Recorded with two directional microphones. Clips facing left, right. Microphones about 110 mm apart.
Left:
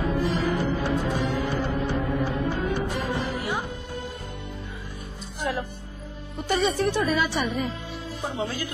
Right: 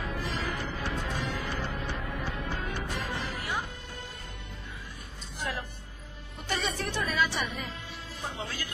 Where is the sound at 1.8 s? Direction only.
30° left (ahead or behind).